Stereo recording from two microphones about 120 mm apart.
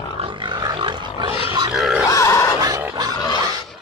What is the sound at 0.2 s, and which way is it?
Roaring cats, 40° right (ahead or behind).